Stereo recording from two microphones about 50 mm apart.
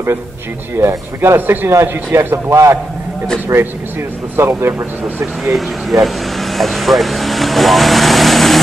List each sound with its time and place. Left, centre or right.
0.7 s speech: right
1.7 s speech: right
4.4 s speech: right
5.4 s speech: centre